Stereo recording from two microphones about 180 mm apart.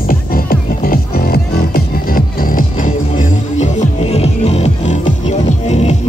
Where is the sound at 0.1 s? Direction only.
55° left (ahead or behind).